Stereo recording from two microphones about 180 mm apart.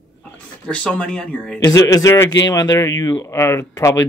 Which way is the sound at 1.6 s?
20° left (ahead or behind).